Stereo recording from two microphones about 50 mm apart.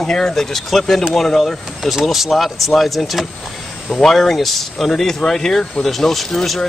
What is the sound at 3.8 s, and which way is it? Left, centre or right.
Speech, centre.